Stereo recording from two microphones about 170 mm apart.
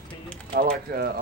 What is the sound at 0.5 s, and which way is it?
Speech, 55° right (ahead or behind).